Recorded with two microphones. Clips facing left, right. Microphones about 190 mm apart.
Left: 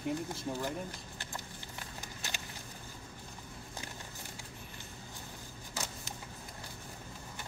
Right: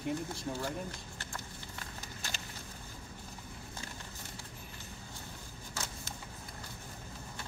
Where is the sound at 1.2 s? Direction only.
15° left (ahead or behind).